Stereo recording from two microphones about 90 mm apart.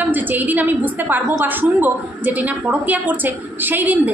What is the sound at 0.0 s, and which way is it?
A woman's voice, 20° right (ahead or behind).